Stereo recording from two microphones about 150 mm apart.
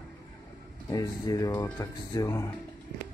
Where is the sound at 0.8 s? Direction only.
20° left (ahead or behind).